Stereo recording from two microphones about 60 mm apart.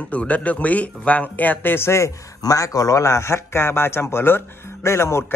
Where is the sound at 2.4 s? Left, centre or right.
Left.